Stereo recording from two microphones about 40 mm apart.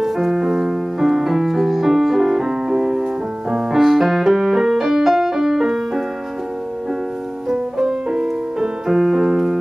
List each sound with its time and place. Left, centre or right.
0.0 s music: centre
7.4 s music: centre
8.1 s music: right
8.8 s piano: centre